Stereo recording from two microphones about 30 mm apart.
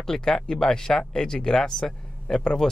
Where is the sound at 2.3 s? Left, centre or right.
Left.